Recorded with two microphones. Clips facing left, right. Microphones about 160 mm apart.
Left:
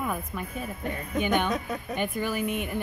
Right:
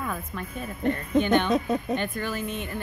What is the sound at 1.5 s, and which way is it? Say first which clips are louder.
Speech: right 6 dB; 25° right (ahead or behind).